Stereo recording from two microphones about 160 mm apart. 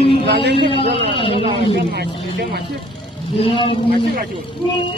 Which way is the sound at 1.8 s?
90° right.